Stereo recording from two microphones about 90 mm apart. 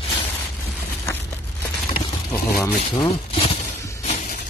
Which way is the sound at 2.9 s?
80° left.